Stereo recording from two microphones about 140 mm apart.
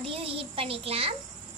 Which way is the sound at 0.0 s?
40° right (ahead or behind).